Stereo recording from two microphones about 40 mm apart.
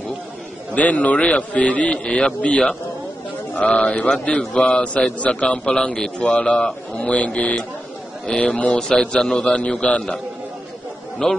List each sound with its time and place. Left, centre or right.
0.7 s a man's voice: left
8.7 s a man's voice: centre; by 10.1 s left
11.2 s a man's voice: centre